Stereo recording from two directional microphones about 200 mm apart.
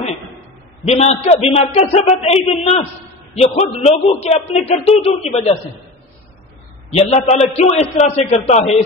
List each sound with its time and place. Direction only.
0.8 s a man's voice: 30° left (ahead or behind)
6.9 s a man's voice: 30° left (ahead or behind)